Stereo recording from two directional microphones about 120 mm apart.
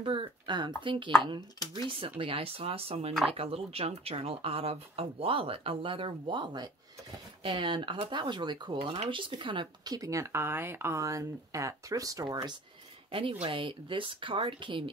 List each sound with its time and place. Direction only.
0.0 s speech: 45° right (ahead or behind)
8.7 s speech: 50° right (ahead or behind); by 12.5 s 35° right (ahead or behind)
13.1 s speech: 45° right (ahead or behind)